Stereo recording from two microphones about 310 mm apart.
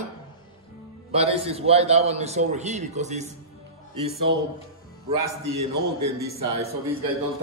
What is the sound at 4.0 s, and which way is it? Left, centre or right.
A man's voice, right.